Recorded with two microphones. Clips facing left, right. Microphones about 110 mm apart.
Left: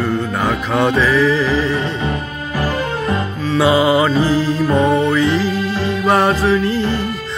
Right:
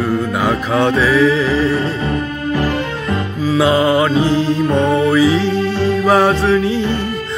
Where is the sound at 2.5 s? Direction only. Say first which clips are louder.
Left 1 dB; 35° left (ahead or behind).